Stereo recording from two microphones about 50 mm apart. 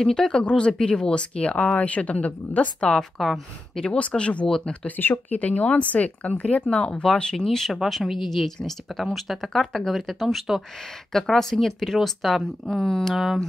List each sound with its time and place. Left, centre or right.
0.0 s speech: centre; by 2.9 s left
3.2 s speech: centre
3.7 s speech: centre
4.5 s speech: centre
4.8 s speech: left; by 7.7 s centre
7.7 s speech: centre
12.6 s speech: centre
13.1 s speech: centre